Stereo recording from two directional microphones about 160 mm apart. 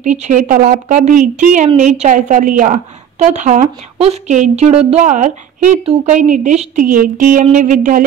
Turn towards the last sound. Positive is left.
turn(degrees=-55)  # may be behind; listen again after turning